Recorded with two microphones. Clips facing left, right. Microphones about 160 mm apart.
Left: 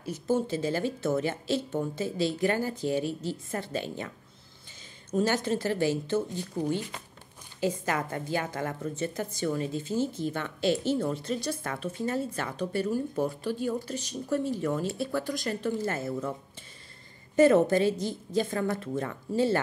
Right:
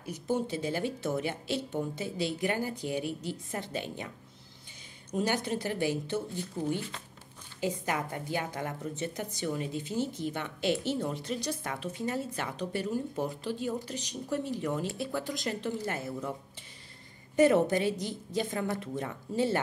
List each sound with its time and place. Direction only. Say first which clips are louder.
0.0 s a woman's voice: left 4 dB; 15° right (ahead or behind)
5.1 s a woman's voice: left 4 dB; 15° right (ahead or behind)
6.2 s speech: left 3 dB; 15° left (ahead or behind)
7.6 s a woman's voice: left 3 dB; 15° right (ahead or behind)
17.4 s a woman's voice: left 3 dB; 15° right (ahead or behind)